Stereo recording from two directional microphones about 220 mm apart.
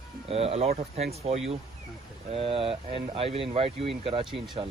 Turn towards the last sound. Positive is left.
turn(degrees=-20)  # may be behind; listen again after turning